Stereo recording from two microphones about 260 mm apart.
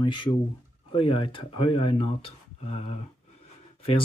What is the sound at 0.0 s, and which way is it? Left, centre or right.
Speech, centre.